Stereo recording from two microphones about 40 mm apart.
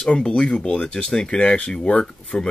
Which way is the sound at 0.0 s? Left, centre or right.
Left.